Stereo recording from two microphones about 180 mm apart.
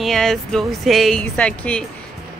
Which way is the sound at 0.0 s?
Centre (ahead or behind).